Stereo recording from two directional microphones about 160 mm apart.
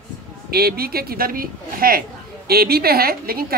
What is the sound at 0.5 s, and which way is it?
A woman's voice, 75° right (ahead or behind).